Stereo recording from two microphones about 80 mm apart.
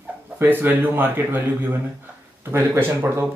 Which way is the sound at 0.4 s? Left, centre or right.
Right.